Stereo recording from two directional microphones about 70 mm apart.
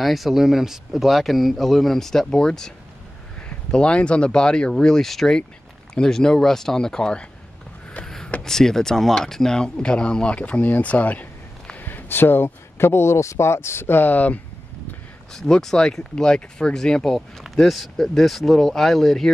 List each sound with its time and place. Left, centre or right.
0.0 s speech: centre
8.0 s a sound: centre
8.4 s speech: centre; by 14.4 s left
15.3 s speech: centre